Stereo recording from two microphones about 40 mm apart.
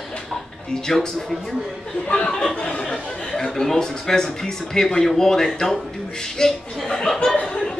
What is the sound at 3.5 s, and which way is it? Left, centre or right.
A woman's voice, centre.